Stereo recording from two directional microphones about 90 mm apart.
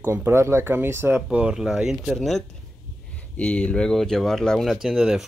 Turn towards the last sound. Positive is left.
turn(degrees=-5)  # may be behind; listen again after turning